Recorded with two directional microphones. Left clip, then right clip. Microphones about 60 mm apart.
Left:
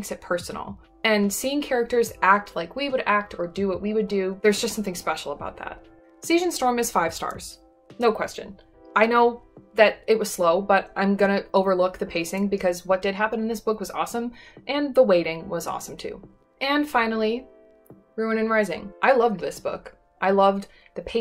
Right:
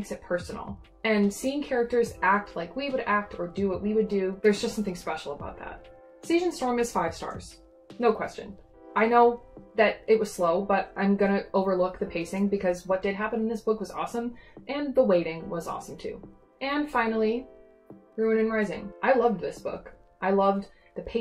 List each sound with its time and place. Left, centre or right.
0.1 s speech: left
3.2 s speech: left
5.2 s speech: left